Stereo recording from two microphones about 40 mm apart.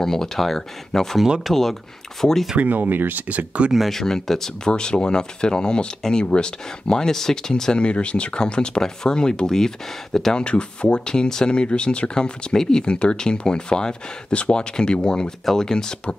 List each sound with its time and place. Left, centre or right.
0.0 s speech: centre
2.6 s speech: right
3.3 s speech: right
3.9 s speech: centre
4.6 s speech: left
7.8 s speech: left
10.3 s speech: left